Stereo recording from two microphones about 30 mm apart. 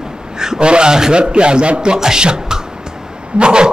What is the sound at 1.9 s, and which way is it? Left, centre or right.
A man's voice, right.